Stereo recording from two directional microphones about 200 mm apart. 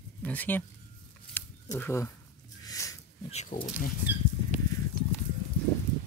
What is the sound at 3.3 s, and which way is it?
Speech, 35° left (ahead or behind).